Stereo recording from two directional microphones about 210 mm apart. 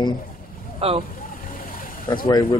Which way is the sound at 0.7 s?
25° right (ahead or behind).